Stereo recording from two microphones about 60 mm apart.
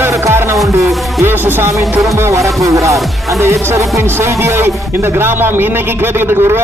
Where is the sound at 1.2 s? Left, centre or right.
Right.